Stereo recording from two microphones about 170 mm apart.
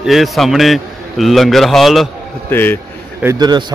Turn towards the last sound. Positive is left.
turn(degrees=-25)  # may be behind; listen again after turning